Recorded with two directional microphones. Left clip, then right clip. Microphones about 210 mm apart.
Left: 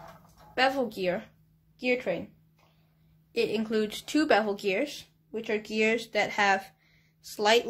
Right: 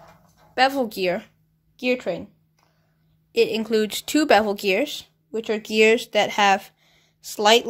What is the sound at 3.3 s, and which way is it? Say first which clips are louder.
Speech: right 8 dB; 35° right (ahead or behind).